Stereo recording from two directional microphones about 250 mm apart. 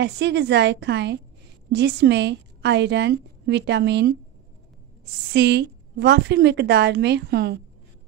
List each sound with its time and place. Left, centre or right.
0.0 s a woman's voice: right
5.3 s a woman's voice: right